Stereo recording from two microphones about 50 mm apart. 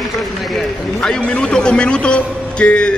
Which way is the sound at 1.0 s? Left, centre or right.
Centre.